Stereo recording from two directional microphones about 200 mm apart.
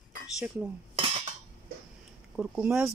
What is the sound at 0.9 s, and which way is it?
Cutlery, 30° right (ahead or behind).